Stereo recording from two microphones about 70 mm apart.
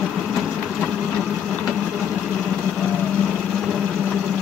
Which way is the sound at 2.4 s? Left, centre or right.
Centre.